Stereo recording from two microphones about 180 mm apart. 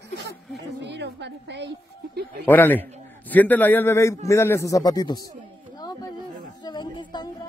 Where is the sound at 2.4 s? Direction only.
10° left (ahead or behind).